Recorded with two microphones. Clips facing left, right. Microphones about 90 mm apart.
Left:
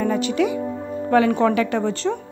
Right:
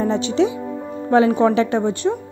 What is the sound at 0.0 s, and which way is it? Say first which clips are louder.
A woman's voice: right 2 dB; 25° right (ahead or behind).